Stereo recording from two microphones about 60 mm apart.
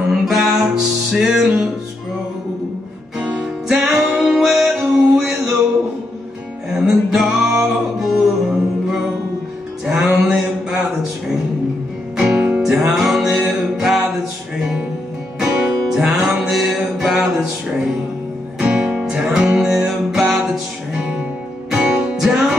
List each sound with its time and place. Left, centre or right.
0.1 s music: centre
3.2 s music: centre
6.7 s music: centre
10.7 s a sound: centre
12.2 s music: centre
15.9 s music: centre
20.9 s music: right
21.6 s music: centre